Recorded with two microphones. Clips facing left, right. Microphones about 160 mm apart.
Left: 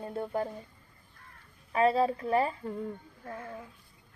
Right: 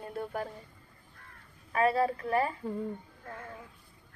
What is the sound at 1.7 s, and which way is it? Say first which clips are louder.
Speech: left 2 dB; 25° left (ahead or behind).